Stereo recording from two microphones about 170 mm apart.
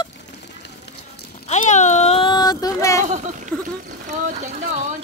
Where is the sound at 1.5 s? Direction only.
45° left (ahead or behind); by 3.0 s 20° left (ahead or behind).